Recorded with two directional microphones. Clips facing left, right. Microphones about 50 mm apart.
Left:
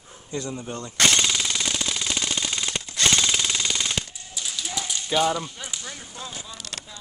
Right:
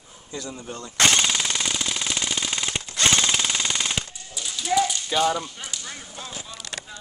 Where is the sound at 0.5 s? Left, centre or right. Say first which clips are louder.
Left 3 dB; centre.